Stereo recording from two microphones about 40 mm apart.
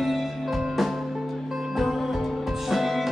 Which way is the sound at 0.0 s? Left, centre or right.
Centre.